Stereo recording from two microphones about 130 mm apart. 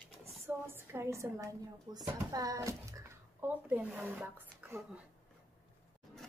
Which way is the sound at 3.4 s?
15° right (ahead or behind).